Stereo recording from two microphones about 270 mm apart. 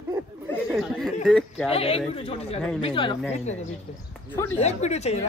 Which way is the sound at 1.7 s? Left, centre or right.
Left.